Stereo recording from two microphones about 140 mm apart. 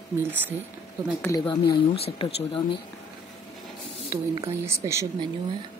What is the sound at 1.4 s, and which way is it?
Speech, 35° left (ahead or behind).